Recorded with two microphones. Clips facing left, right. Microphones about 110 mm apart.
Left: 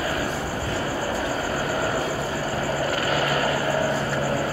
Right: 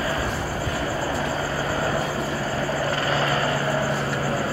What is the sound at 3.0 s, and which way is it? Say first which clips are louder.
Vehicle: even; 30° right (ahead or behind).